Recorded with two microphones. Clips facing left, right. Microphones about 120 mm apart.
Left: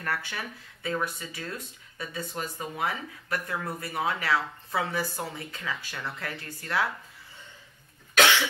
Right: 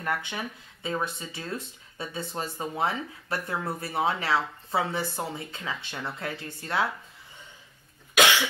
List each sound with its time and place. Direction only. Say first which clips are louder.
0.0 s speech: right 2 dB; 20° right (ahead or behind)